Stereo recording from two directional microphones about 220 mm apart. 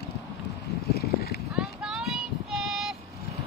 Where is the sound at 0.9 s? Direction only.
45° left (ahead or behind).